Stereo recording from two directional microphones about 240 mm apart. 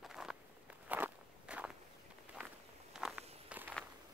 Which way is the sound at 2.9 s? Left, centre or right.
Centre.